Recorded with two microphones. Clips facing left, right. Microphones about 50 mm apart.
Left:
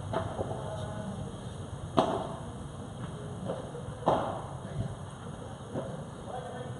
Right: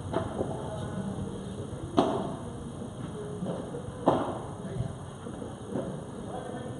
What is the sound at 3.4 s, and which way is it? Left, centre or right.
Vehicle, centre.